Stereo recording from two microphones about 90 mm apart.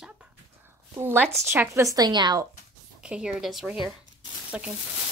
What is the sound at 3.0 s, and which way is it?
Speech, 10° right (ahead or behind).